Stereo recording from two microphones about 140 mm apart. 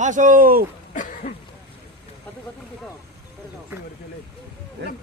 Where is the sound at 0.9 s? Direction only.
65° left (ahead or behind).